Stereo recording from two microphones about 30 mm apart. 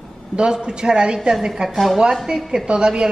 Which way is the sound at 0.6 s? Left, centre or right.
Right.